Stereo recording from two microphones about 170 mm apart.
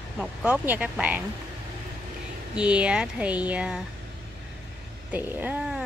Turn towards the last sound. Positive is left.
turn(degrees=-5)  # may be behind; listen again after turning